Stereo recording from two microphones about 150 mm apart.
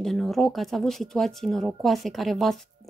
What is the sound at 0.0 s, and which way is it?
Speech, centre (ahead or behind).